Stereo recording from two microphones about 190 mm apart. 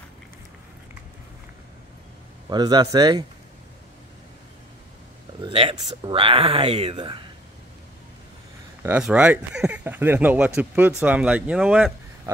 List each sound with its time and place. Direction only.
2.5 s speech: 20° right (ahead or behind)
5.4 s speech: 30° right (ahead or behind)
8.8 s speech: 10° right (ahead or behind)